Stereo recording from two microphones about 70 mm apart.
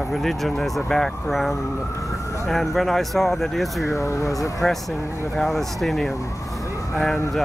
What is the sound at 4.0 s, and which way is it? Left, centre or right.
Speech, left.